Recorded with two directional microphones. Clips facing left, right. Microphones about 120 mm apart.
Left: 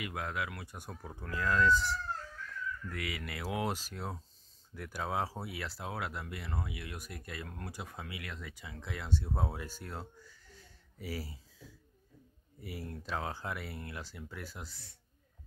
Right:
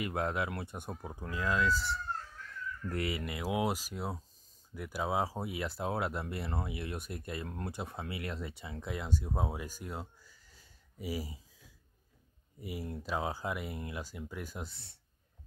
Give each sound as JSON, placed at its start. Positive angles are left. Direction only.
{"t": 0.0, "sound": "speech", "side_deg": -35}
{"t": 1.7, "sound": "speech", "side_deg": 0}
{"t": 2.9, "sound": "speech", "side_deg": -30}